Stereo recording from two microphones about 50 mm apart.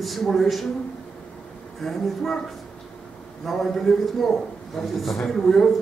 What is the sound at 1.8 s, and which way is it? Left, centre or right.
Speech, centre.